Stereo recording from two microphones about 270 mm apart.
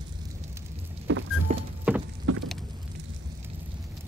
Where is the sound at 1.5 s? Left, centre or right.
Right.